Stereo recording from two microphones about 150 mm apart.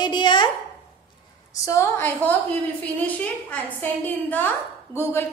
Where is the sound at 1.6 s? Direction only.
15° left (ahead or behind).